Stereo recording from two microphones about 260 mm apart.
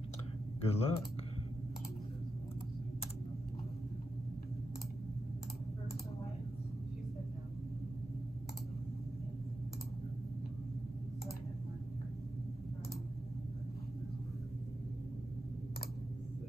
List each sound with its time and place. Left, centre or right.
0.7 s speech: left